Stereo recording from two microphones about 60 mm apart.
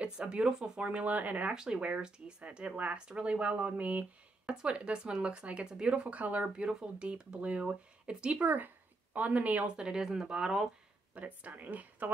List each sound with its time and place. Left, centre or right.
0.0 s speech: centre
1.5 s speech: centre
8.5 s speech: right
9.8 s speech: centre
11.1 s speech: right